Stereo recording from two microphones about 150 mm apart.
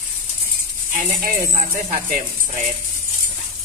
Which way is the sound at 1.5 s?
65° right (ahead or behind).